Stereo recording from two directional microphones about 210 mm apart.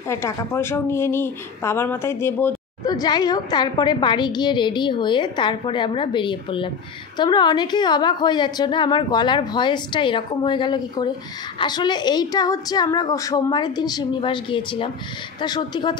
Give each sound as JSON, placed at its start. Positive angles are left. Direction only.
{"t": 0.1, "sound": "a woman's voice", "side_deg": 15}